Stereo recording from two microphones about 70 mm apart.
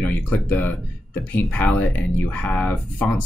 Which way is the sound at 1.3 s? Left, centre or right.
Left.